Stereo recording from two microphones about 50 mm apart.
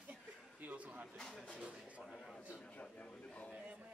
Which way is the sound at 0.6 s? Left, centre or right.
Right.